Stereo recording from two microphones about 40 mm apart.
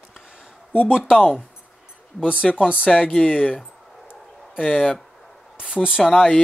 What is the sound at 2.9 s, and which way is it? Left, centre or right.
Speech, left.